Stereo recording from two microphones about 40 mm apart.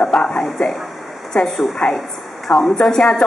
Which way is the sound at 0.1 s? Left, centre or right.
Centre.